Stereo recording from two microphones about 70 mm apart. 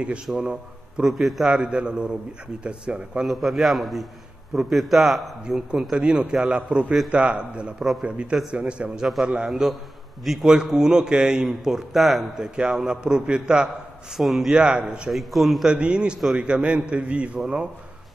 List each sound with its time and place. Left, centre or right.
0.0 s a man's voice: centre
3.3 s a man's voice: centre
7.8 s a man's voice: centre
8.5 s a man's voice: centre
14.1 s a man's voice: centre
14.5 s a man's voice: centre
15.0 s a man's voice: centre
15.7 s a man's voice: centre
17.4 s a man's voice: centre